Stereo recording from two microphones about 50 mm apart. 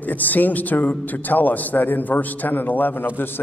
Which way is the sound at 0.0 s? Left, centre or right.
Left.